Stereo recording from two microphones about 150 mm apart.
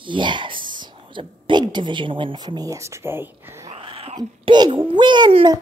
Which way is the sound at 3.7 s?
40° right (ahead or behind).